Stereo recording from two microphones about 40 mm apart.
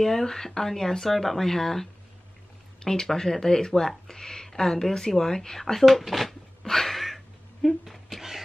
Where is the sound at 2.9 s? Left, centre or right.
Centre.